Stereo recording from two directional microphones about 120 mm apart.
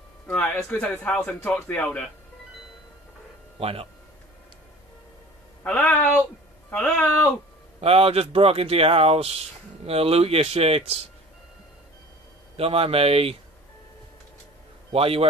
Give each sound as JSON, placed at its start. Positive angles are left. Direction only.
{"t": 0.3, "sound": "speech", "side_deg": 15}
{"t": 3.5, "sound": "speech", "side_deg": -55}
{"t": 5.6, "sound": "speech", "side_deg": 5}
{"t": 7.8, "sound": "speech", "side_deg": -55}
{"t": 12.5, "sound": "speech", "side_deg": -55}
{"t": 14.9, "sound": "speech", "side_deg": -55}